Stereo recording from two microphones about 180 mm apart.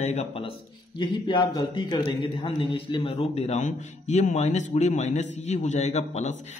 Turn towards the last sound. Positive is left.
turn(degrees=40)  # may be behind; listen again after turning